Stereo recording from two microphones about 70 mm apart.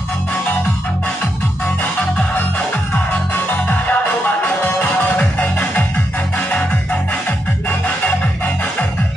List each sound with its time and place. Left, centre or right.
1.8 s music: left